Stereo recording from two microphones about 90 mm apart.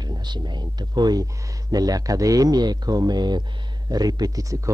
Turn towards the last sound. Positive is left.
turn(degrees=-40)  # may be behind; listen again after turning